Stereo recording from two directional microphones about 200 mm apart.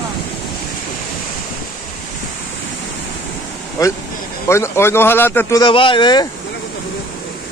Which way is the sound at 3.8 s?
15° left (ahead or behind).